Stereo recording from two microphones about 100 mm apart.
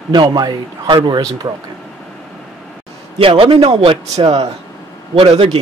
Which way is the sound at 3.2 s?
65° right (ahead or behind).